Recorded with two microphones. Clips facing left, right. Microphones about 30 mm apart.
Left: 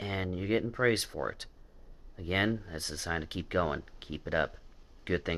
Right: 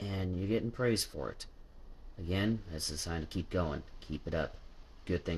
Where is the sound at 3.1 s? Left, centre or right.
Left.